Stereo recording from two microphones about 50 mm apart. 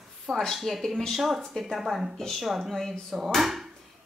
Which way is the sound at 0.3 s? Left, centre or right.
Centre.